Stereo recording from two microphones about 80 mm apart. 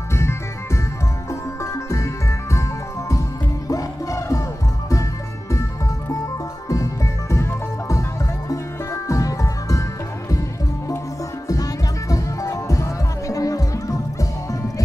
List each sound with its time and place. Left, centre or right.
0.1 s music: left
1.6 s music: left
3.1 s music: left
6.7 s music: left
11.4 s music: left